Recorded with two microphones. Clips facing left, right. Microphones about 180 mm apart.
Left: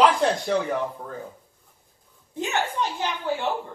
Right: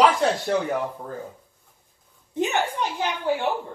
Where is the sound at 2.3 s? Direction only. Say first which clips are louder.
Right 4 dB; 20° right (ahead or behind).